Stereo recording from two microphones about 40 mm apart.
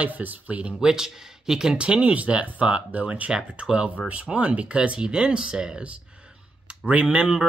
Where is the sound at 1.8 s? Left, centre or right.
Right.